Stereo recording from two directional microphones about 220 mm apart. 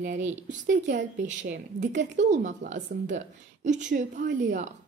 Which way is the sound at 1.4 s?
55° right (ahead or behind).